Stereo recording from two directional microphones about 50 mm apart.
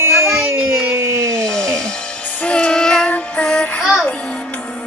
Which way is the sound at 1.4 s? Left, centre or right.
Centre.